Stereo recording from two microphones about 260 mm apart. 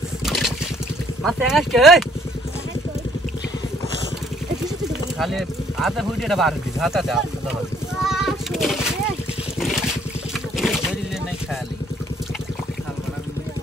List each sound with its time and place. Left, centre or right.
0.2 s trickle: centre
1.2 s speech: centre
5.2 s speech: centre
8.0 s a sound: centre
10.6 s vehicle: centre